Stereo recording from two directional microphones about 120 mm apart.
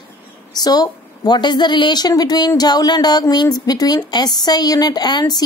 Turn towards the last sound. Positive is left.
turn(degrees=35)  # may be behind; listen again after turning